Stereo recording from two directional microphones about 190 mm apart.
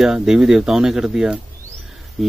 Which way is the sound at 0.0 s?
5° right (ahead or behind).